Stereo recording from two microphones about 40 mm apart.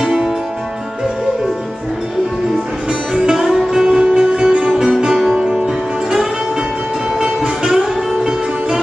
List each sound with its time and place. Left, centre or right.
0.0 s music: centre
2.9 s music: right
3.3 s music: centre
7.2 s music: centre